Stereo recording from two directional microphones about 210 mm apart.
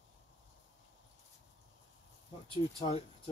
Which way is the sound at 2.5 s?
25° left (ahead or behind).